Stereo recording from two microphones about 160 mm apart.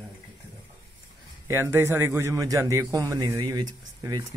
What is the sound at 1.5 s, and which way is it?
A man's voice, 15° right (ahead or behind).